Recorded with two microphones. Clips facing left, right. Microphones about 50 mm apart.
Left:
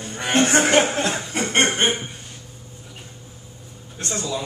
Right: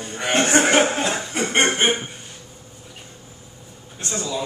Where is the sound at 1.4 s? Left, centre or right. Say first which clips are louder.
Right 1 dB; centre.